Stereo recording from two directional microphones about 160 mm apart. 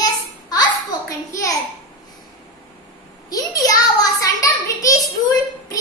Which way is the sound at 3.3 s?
20° left (ahead or behind).